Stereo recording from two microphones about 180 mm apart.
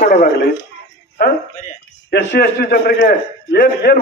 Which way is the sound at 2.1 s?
65° left (ahead or behind).